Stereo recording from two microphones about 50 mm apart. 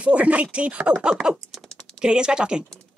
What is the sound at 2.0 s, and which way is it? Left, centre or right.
Speech, centre.